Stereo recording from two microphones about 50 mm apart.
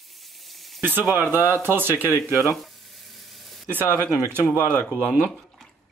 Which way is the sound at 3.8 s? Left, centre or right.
Right.